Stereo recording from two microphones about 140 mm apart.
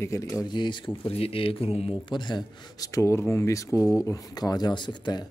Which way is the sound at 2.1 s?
30° left (ahead or behind).